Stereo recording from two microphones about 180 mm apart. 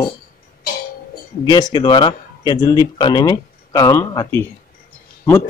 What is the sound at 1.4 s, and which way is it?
Speech, 25° left (ahead or behind).